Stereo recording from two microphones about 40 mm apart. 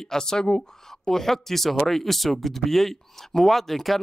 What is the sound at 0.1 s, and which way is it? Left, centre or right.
Speech, centre.